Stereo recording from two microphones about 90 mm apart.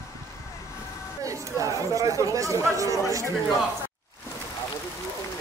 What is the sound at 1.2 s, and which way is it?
Speech, 40° right (ahead or behind).